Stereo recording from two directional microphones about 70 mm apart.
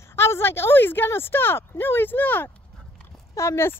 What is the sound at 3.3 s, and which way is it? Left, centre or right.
Speech, left.